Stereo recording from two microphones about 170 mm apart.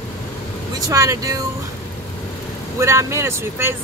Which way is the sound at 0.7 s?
20° right (ahead or behind).